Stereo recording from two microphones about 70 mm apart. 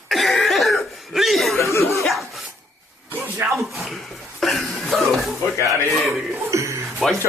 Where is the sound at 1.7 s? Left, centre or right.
Left.